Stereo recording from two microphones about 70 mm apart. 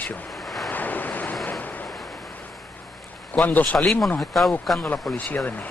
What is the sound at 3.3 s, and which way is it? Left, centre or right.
Speech, left.